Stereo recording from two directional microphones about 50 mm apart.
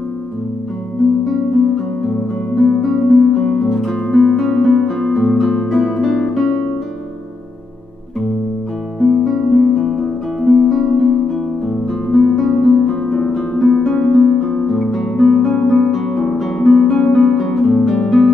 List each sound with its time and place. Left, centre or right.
2.5 s music: centre
9.0 s music: centre
12.1 s harp: centre
13.9 s music: centre